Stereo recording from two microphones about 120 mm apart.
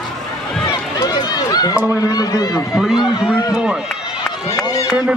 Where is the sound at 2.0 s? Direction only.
30° left (ahead or behind).